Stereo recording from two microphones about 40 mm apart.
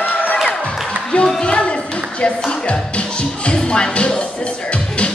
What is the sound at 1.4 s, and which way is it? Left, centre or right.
Music, left.